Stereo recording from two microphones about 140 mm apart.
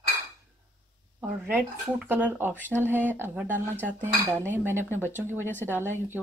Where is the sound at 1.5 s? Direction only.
10° right (ahead or behind).